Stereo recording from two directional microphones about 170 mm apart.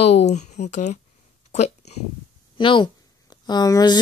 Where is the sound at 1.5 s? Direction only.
40° left (ahead or behind).